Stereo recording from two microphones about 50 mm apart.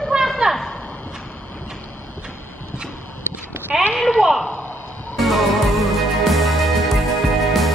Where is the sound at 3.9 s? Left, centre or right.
Centre.